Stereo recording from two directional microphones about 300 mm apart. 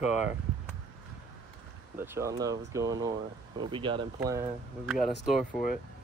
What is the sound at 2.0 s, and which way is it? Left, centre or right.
Speech, centre.